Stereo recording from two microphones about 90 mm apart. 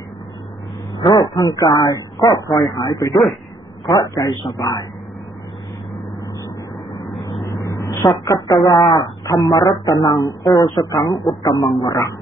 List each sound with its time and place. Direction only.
0.9 s a woman's voice: 50° left (ahead or behind)
7.5 s a woman's voice: 40° left (ahead or behind)